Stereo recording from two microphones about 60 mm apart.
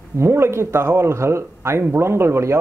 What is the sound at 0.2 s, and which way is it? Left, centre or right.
Speech, right.